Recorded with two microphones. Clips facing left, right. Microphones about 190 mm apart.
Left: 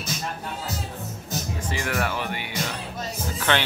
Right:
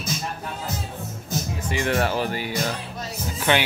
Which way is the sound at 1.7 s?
30° right (ahead or behind).